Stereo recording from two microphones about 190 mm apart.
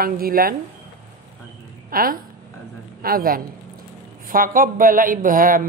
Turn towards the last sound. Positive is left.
turn(degrees=-45)  # may be behind; listen again after turning